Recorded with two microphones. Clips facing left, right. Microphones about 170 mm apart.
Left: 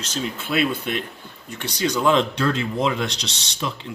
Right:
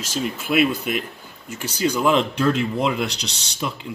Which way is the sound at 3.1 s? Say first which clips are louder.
Even; 35° right (ahead or behind).